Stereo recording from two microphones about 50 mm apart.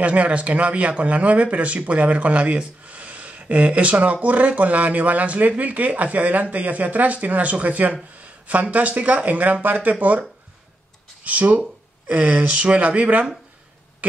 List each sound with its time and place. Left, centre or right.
0.0 s speech: right
11.2 s speech: right